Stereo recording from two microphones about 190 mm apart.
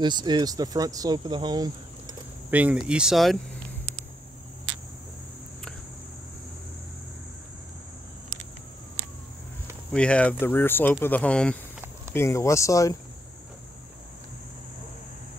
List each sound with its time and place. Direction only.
0.0 s speech: 25° right (ahead or behind)
2.5 s speech: 10° right (ahead or behind)
9.9 s speech: 5° left (ahead or behind)